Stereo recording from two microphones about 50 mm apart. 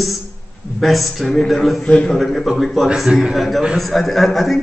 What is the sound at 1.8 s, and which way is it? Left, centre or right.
Speech, centre.